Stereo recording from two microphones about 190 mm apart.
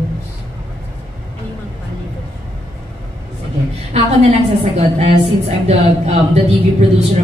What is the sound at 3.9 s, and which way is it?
Speech, 35° right (ahead or behind).